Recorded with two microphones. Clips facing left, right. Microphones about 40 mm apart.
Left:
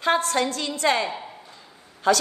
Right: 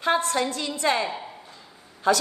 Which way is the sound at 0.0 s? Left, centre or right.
Left.